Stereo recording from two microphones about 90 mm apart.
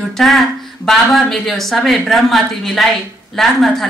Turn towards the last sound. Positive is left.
turn(degrees=5)  # may be behind; listen again after turning